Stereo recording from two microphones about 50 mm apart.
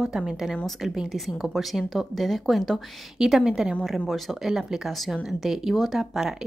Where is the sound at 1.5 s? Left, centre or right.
Centre.